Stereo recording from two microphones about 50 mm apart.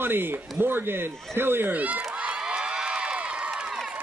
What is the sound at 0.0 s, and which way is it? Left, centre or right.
Speech, right.